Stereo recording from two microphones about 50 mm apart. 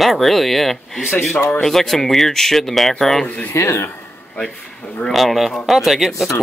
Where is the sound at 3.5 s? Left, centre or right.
Left.